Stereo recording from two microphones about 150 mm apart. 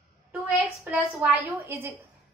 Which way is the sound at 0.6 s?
10° right (ahead or behind).